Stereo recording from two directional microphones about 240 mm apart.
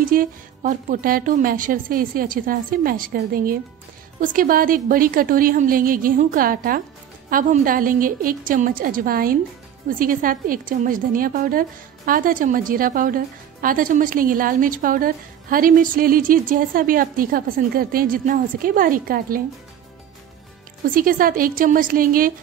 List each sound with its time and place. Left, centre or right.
0.0 s speech: right
20.9 s speech: right